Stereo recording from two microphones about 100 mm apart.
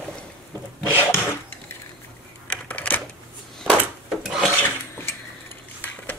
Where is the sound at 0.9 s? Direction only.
20° left (ahead or behind).